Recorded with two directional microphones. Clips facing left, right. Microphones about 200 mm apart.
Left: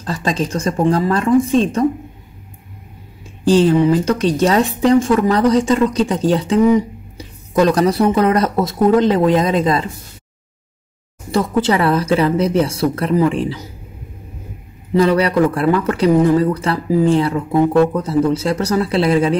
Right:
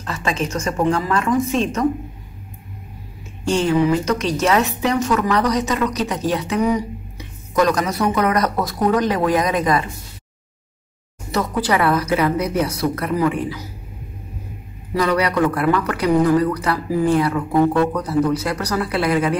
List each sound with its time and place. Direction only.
0.0 s a woman's voice: 35° left (ahead or behind)
3.4 s a woman's voice: 30° left (ahead or behind)
11.3 s a woman's voice: 25° left (ahead or behind)
15.0 s a woman's voice: 30° left (ahead or behind)